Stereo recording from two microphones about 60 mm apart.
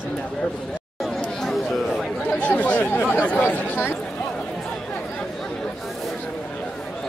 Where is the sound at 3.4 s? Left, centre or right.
Left.